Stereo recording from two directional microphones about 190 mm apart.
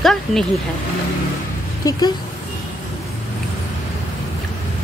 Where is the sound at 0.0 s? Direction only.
Centre (ahead or behind).